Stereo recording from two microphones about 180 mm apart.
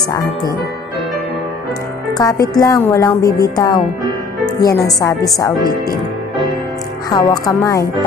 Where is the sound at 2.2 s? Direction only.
20° left (ahead or behind).